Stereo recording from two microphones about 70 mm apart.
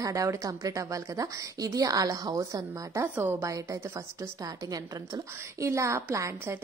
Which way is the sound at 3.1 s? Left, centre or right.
Right.